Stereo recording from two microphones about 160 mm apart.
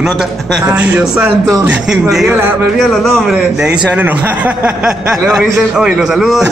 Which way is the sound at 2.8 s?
Centre (ahead or behind).